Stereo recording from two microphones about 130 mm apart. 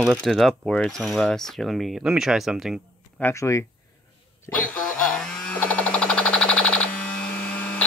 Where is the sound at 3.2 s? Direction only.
20° left (ahead or behind).